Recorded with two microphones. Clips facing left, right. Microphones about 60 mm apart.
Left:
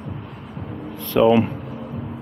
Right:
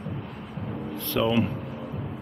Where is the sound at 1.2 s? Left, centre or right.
Left.